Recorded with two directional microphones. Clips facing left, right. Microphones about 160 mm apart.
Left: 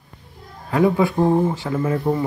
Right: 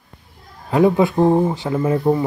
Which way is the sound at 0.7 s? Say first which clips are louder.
Right 3 dB; 20° right (ahead or behind).